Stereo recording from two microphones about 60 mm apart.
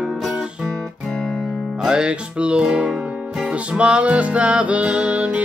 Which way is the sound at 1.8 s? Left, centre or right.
Centre.